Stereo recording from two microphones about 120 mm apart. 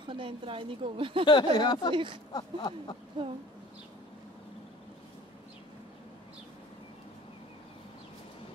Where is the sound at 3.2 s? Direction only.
40° right (ahead or behind).